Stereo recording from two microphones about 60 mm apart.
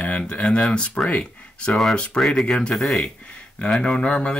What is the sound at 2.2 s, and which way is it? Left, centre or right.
Speech, centre.